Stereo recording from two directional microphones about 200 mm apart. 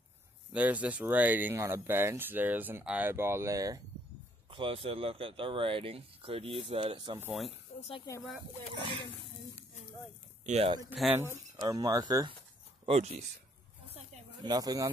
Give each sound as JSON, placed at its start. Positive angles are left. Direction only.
{"t": 0.5, "sound": "speech", "side_deg": -5}
{"t": 7.2, "sound": "speech", "side_deg": -5}
{"t": 7.9, "sound": "speech", "side_deg": 20}
{"t": 10.4, "sound": "speech", "side_deg": -35}
{"t": 11.0, "sound": "speech", "side_deg": -10}
{"t": 12.8, "sound": "speech", "side_deg": -30}
{"t": 13.9, "sound": "a sound", "side_deg": -30}
{"t": 14.5, "sound": "speech", "side_deg": -20}